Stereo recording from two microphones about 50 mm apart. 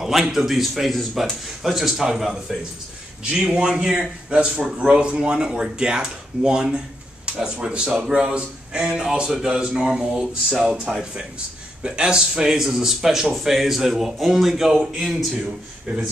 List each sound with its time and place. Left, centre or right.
0.0 s speech: centre
14.7 s a man's voice: centre
15.0 s speech: centre